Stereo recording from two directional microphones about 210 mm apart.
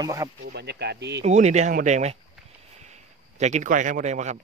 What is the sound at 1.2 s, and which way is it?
A man's voice, 35° right (ahead or behind).